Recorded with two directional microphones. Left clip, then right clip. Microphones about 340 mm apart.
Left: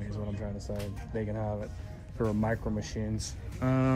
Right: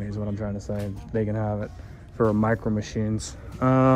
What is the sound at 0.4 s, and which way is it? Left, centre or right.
Speech, right.